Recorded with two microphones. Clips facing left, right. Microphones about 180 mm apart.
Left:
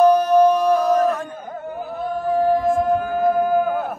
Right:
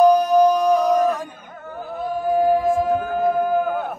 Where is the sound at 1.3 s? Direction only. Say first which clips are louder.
Left 9 dB; 40° left (ahead or behind).